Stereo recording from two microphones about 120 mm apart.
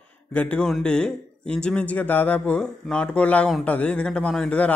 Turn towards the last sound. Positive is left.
turn(degrees=10)  # may be behind; listen again after turning